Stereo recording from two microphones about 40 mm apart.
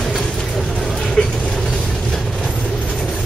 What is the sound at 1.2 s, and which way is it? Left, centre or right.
Mechanisms, left.